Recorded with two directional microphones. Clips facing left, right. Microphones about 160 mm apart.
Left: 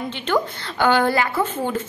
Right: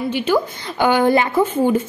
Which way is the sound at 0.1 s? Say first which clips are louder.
Right 3 dB; 10° right (ahead or behind).